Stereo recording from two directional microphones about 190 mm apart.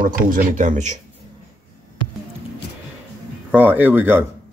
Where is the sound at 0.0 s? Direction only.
45° right (ahead or behind).